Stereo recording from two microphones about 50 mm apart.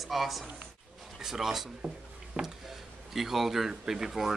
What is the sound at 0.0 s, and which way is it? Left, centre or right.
Speech, centre.